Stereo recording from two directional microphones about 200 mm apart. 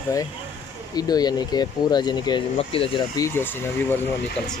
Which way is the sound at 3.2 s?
10° left (ahead or behind).